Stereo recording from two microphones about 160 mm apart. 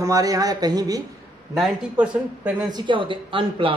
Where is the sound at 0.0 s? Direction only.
20° right (ahead or behind).